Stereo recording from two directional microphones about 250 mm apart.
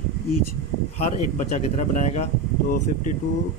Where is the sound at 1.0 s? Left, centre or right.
Left.